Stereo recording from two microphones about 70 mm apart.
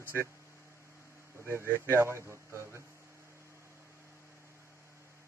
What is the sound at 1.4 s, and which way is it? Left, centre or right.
Speech, right.